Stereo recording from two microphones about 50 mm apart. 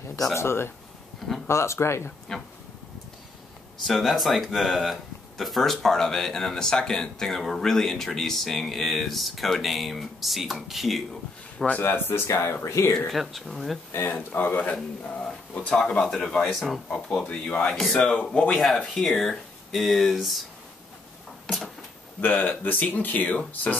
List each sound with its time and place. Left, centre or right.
0.3 s speech: left
1.5 s speech: left
3.8 s speech: centre
11.5 s speech: left
11.8 s speech: left
12.3 s speech: left
12.6 s speech: left
13.1 s speech: centre
14.0 s speech: left; by 16.8 s centre
16.9 s speech: centre
18.0 s speech: centre
18.9 s speech: centre
22.2 s speech: left